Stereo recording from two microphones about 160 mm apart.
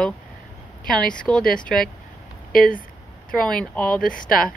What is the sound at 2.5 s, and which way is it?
Speech, 65° left (ahead or behind).